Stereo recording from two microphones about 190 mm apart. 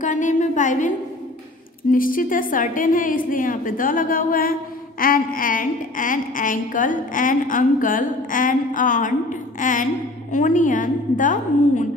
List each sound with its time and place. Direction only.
0.0 s a woman's voice: 40° left (ahead or behind)